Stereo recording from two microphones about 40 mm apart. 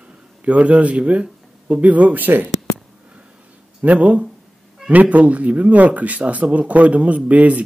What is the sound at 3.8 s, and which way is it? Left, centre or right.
Speech, right.